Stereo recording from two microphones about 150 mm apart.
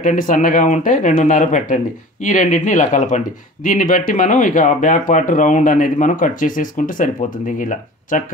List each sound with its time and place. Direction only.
0.0 s speech: 60° left (ahead or behind)